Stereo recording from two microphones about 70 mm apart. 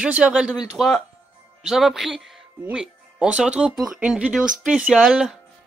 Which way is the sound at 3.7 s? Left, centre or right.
Centre.